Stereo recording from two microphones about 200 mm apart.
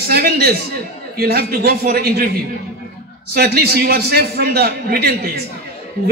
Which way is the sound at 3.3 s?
50° right (ahead or behind).